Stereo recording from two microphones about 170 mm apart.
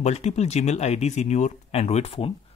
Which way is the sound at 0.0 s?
40° left (ahead or behind).